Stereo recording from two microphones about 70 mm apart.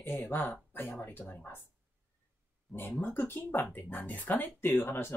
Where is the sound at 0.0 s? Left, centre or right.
Left.